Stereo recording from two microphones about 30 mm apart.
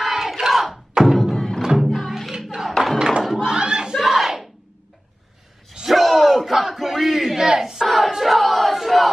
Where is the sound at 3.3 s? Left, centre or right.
Right.